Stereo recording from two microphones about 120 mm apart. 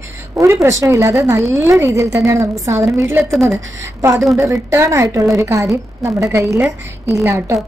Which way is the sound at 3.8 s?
20° right (ahead or behind).